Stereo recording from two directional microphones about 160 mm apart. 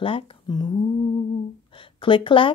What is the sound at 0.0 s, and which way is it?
Speech, 35° left (ahead or behind).